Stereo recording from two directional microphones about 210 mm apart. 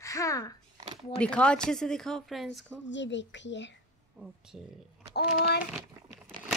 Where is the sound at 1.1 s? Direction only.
5° left (ahead or behind).